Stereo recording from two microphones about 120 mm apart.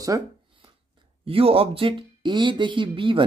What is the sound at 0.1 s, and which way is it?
Speech, 25° right (ahead or behind).